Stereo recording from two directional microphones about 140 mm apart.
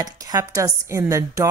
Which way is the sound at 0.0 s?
25° right (ahead or behind).